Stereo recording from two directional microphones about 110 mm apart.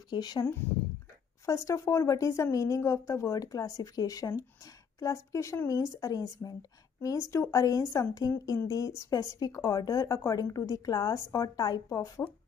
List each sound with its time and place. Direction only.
0.1 s a woman's voice: 40° left (ahead or behind)